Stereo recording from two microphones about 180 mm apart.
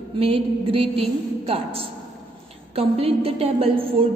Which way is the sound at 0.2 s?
30° right (ahead or behind).